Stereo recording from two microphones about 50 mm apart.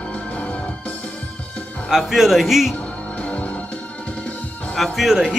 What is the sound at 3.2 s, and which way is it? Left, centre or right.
Music, left.